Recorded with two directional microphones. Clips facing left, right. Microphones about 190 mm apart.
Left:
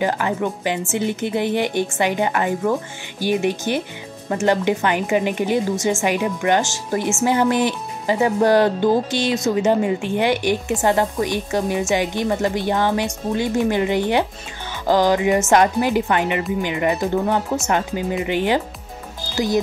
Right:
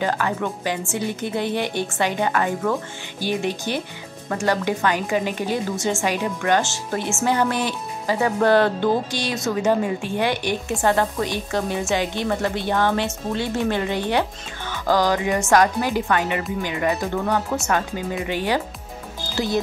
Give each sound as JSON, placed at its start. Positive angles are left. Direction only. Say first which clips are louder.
{"t": 0.0, "sound": "speech", "louder": "left 2 dB", "side_deg": 15}